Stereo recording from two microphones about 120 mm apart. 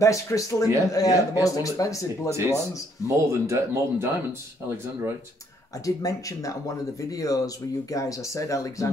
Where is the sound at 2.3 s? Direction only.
20° right (ahead or behind).